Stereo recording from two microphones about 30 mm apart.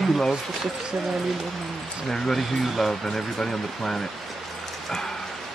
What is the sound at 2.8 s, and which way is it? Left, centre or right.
Speech, centre.